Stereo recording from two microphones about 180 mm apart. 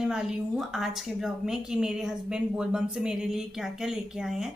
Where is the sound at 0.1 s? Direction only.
5° right (ahead or behind).